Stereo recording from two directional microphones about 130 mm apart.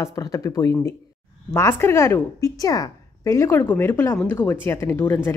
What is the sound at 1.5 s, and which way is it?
Speech, 20° left (ahead or behind).